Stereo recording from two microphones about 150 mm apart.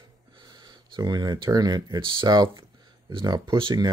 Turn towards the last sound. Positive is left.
turn(degrees=-30)  # may be behind; listen again after turning